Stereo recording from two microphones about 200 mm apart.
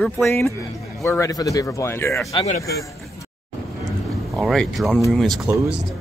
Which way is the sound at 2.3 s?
35° left (ahead or behind).